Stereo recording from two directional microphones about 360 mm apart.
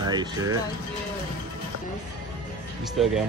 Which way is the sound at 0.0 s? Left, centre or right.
Centre.